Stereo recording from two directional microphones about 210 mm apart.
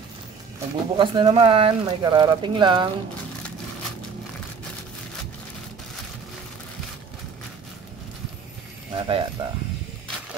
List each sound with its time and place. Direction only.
0.9 s speech: 25° right (ahead or behind)
8.9 s speech: 25° right (ahead or behind)